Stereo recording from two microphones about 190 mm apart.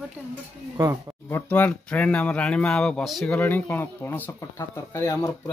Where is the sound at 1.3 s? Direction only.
10° left (ahead or behind).